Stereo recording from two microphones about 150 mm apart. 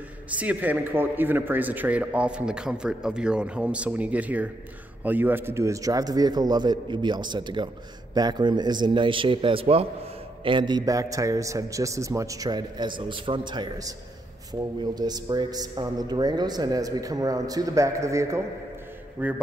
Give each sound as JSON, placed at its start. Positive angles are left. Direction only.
{"t": 0.3, "sound": "a man's voice", "side_deg": -10}